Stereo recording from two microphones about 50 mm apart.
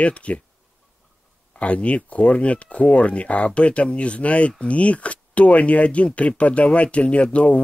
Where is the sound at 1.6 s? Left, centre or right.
Left.